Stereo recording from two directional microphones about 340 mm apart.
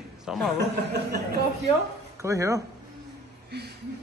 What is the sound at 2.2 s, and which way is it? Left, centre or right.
Speech, centre.